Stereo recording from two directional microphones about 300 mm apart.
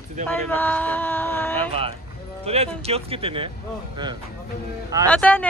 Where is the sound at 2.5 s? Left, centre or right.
Centre.